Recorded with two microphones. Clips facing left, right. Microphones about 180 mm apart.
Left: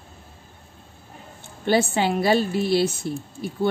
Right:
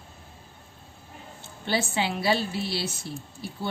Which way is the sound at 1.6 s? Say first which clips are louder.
Left 7 dB; 50° left (ahead or behind).